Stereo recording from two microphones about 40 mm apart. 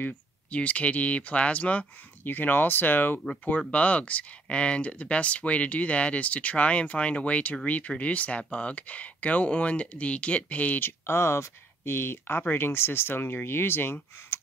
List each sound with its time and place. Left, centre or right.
0.5 s speech: left
2.2 s speech: left
3.4 s speech: left
10.8 s speech: left